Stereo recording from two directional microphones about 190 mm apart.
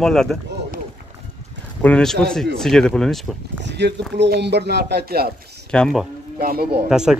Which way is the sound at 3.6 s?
65° right (ahead or behind).